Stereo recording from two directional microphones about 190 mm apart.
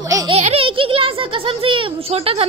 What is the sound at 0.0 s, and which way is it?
Baby laughter, 20° right (ahead or behind).